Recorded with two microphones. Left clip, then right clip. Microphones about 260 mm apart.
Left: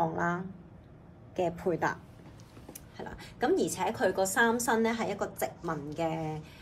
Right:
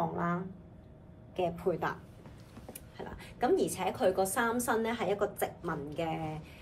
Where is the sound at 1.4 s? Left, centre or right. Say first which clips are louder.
Left 2 dB; left.